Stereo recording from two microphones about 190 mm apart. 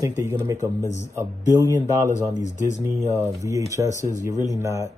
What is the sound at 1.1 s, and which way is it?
Mantra, 20° right (ahead or behind).